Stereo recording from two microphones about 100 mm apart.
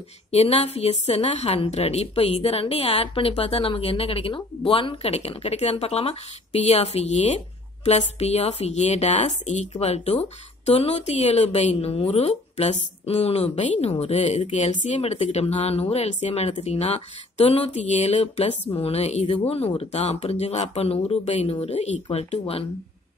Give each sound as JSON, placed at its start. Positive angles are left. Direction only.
{"t": 0.3, "sound": "a woman's voice", "side_deg": 90}